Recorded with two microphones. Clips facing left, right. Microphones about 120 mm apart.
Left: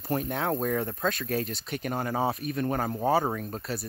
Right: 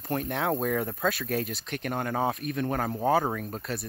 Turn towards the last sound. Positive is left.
turn(degrees=0)  # may be behind; listen again after turning